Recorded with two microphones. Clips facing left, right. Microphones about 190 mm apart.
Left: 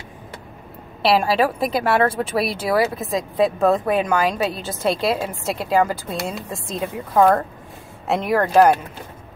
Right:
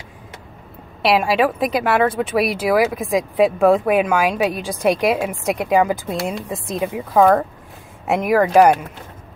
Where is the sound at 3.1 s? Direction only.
15° right (ahead or behind).